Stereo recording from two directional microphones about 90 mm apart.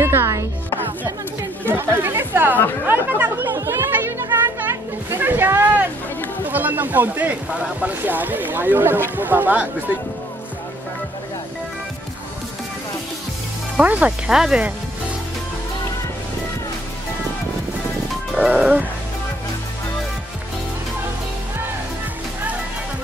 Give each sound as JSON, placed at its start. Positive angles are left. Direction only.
{"t": 0.0, "sound": "chopping", "side_deg": -25}
{"t": 1.7, "sound": "speech", "side_deg": -25}
{"t": 3.5, "sound": "music", "side_deg": -30}
{"t": 6.4, "sound": "speech", "side_deg": -20}
{"t": 13.7, "sound": "speech", "side_deg": -15}
{"t": 18.3, "sound": "speech", "side_deg": -15}